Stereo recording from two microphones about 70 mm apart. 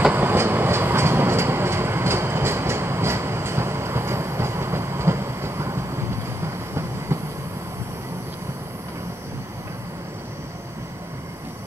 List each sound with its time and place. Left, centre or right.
0.1 s train: right